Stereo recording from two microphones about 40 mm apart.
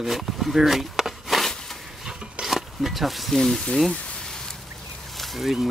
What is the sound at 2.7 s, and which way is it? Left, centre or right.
Speech, centre.